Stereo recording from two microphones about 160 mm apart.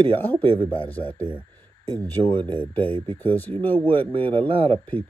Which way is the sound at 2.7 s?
10° left (ahead or behind).